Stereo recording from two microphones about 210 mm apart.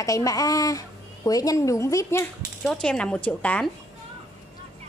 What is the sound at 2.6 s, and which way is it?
A woman's voice, 5° left (ahead or behind).